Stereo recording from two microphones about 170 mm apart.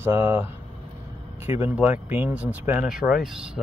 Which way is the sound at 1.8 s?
10° right (ahead or behind).